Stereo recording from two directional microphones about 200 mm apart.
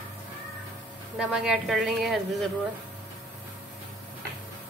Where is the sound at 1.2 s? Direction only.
Centre (ahead or behind).